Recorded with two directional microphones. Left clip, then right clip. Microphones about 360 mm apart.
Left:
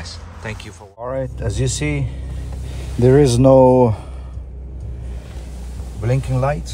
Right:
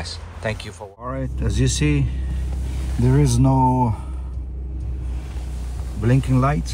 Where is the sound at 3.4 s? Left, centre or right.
Left.